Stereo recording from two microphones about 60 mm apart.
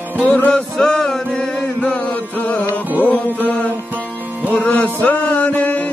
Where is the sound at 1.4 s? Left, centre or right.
Left.